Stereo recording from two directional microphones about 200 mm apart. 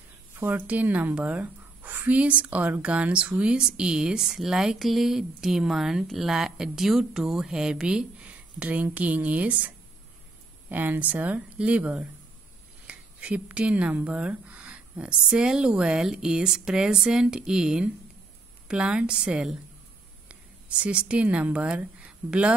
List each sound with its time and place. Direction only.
0.4 s a woman's voice: 10° right (ahead or behind)
10.7 s a woman's voice: 10° right (ahead or behind)